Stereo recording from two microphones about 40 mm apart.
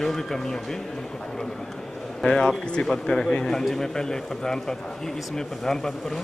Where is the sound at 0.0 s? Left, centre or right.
Centre.